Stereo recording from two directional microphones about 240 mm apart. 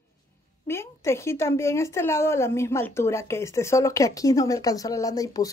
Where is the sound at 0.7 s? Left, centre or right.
Centre.